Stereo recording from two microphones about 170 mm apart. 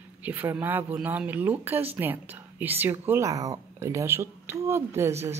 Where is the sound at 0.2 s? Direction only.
10° right (ahead or behind).